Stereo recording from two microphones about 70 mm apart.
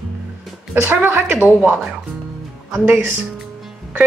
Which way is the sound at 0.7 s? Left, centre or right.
Right.